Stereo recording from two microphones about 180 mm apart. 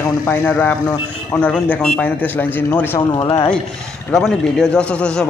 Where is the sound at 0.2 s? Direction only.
10° left (ahead or behind).